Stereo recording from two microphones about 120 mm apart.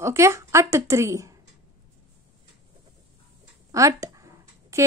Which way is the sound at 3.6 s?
25° right (ahead or behind).